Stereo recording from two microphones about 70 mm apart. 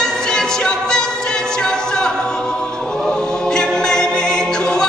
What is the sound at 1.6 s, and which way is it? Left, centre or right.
A capella, centre.